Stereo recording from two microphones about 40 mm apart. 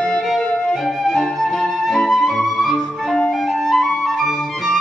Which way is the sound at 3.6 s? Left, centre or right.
Centre.